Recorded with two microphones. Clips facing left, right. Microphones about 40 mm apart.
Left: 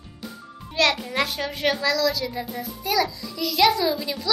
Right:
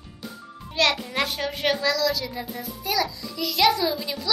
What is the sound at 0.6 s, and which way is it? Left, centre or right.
A child's voice, centre.